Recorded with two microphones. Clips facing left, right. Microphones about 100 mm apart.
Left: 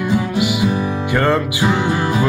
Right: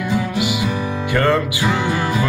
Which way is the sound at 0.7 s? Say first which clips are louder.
Left 3 dB; 20° left (ahead or behind).